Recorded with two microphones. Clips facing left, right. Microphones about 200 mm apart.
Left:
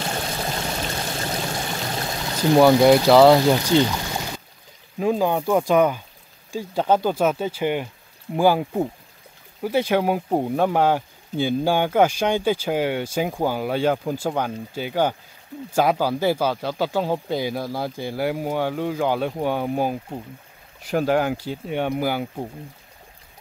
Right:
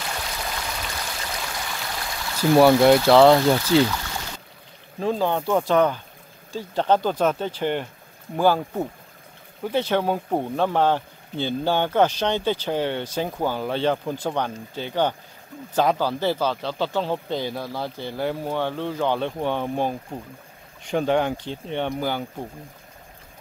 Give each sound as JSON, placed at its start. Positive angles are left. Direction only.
{"t": 0.0, "sound": "stream", "side_deg": 35}
{"t": 2.3, "sound": "a sound", "side_deg": 20}
{"t": 2.6, "sound": "speech", "side_deg": 0}
{"t": 3.3, "sound": "speech", "side_deg": 15}